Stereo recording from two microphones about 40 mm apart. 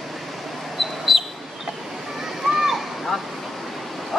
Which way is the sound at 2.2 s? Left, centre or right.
Centre.